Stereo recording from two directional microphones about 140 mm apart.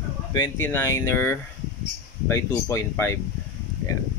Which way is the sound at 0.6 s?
20° left (ahead or behind).